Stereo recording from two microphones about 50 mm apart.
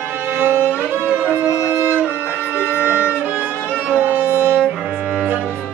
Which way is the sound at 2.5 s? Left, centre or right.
Right.